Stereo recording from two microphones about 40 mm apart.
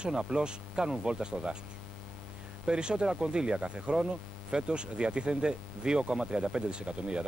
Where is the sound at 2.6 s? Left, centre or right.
Right.